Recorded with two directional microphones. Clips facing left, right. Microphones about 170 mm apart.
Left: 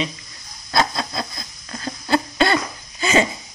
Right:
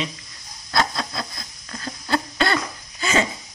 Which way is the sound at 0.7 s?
20° left (ahead or behind).